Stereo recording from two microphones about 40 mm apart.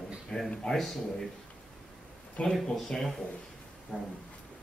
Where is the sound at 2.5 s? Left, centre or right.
Centre.